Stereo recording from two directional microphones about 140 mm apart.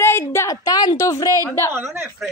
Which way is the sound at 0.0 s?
20° left (ahead or behind).